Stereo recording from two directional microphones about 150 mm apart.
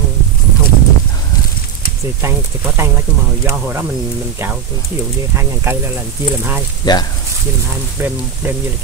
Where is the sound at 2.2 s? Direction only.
15° right (ahead or behind).